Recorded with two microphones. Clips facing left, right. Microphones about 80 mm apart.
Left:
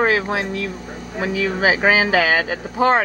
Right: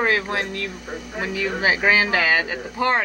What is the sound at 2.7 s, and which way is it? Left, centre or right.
Speech, left.